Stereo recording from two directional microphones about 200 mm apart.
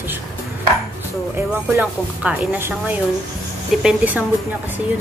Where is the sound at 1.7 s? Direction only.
5° right (ahead or behind).